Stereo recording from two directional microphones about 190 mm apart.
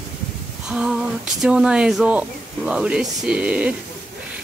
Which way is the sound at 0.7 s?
5° right (ahead or behind).